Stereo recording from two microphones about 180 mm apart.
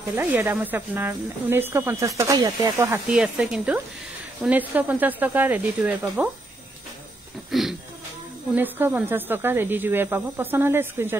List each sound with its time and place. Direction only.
0.1 s speech: 10° right (ahead or behind)
3.2 s speech: 5° right (ahead or behind)
7.5 s a sound: centre (ahead or behind)
8.5 s speech: 10° right (ahead or behind)